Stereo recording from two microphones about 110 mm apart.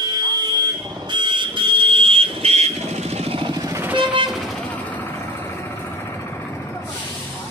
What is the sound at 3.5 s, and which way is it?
Vehicle, 35° right (ahead or behind).